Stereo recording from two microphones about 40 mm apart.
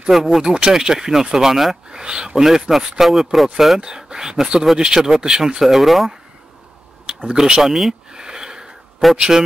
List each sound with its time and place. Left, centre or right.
0.1 s speech: centre
1.9 s speech: centre
3.8 s speech: centre
7.1 s a sound: right
7.3 s a man's voice: centre
7.6 s speech: centre
8.1 s a sound: centre
9.1 s a man's voice: centre